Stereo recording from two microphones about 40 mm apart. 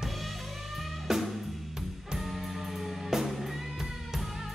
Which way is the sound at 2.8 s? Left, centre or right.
Centre.